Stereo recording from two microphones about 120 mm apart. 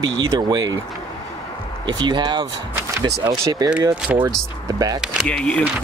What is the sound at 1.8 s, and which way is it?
Speech, 35° right (ahead or behind).